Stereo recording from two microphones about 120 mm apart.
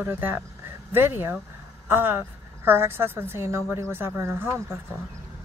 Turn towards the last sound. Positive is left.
turn(degrees=-20)  # may be behind; listen again after turning